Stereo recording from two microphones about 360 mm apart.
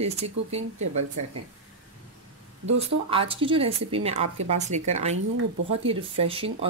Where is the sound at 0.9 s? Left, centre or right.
Right.